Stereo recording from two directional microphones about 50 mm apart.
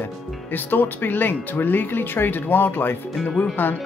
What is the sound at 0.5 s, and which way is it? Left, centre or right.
Speech, left.